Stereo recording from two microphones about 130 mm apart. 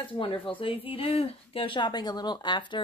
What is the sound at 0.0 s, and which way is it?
Speech, 40° left (ahead or behind).